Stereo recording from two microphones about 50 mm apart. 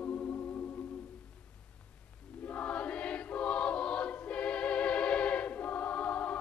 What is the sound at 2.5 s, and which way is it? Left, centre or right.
Choir, left.